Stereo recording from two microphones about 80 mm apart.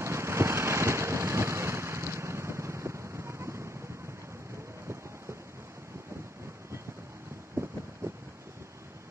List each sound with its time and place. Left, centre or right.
0.0 s vehicle: right